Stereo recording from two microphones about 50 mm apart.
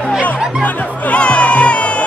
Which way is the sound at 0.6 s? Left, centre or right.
Left.